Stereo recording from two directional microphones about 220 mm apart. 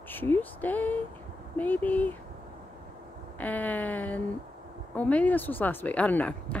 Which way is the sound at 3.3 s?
5° left (ahead or behind).